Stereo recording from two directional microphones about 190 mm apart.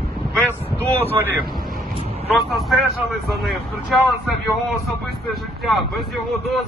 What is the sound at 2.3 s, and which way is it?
Speech, centre (ahead or behind).